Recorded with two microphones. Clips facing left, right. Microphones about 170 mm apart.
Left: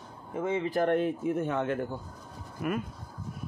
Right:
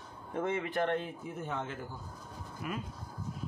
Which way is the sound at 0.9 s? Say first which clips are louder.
Left 10 dB; 65° left (ahead or behind).